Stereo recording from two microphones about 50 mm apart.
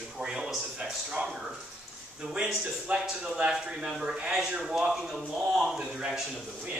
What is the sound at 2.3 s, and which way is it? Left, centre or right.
Speech, centre.